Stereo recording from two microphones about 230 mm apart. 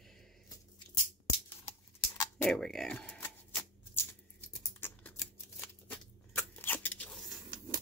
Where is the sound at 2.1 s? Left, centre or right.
Centre.